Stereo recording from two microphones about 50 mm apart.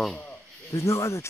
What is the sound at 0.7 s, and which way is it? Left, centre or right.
Speech, left.